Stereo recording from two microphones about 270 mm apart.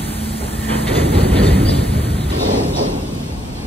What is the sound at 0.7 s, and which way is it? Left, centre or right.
Train, centre.